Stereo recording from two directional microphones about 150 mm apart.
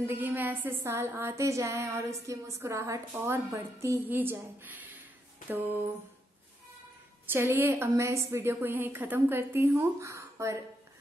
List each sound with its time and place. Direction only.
0.0 s a woman's voice: 10° right (ahead or behind)
7.2 s a woman's voice: 15° right (ahead or behind)